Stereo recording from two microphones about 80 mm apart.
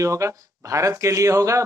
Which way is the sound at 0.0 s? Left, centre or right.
Right.